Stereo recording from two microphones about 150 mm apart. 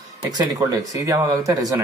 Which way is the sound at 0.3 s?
25° right (ahead or behind).